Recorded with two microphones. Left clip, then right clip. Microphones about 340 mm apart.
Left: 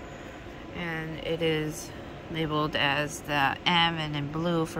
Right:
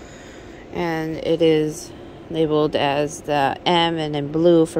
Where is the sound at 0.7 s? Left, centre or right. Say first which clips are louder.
Right 11 dB; centre.